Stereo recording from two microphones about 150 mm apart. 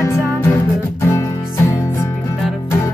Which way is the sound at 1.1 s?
15° left (ahead or behind).